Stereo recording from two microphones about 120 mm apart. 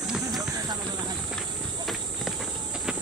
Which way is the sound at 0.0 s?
5° right (ahead or behind).